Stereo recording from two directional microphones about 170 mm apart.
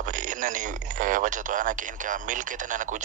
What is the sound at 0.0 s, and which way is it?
Speech, 50° right (ahead or behind).